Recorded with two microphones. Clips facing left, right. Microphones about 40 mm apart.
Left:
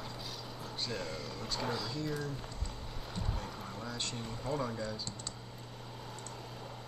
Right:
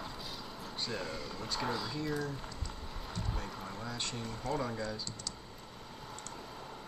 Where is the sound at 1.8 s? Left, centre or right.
Centre.